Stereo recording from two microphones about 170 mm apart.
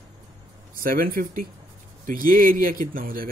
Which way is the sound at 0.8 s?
60° right (ahead or behind).